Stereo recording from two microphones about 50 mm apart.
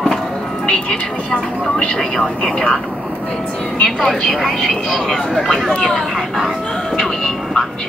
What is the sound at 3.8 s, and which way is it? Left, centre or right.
Speech, centre.